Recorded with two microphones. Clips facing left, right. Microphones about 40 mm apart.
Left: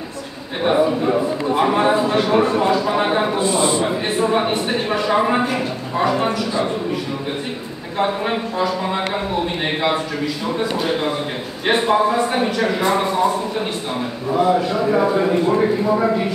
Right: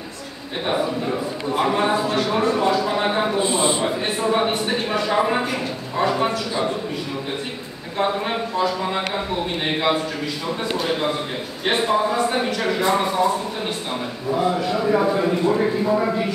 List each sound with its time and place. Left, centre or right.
0.7 s a man's voice: left
1.7 s speech: centre
3.3 s a man's voice: right
3.8 s speech: centre
8.0 s speech: centre
10.8 s speech: centre
11.6 s a man's voice: left
14.3 s speech: centre
14.8 s a man's voice: centre